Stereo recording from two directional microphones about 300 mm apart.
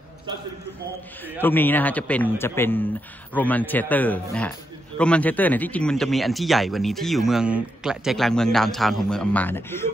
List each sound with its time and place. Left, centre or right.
1.4 s a man's voice: centre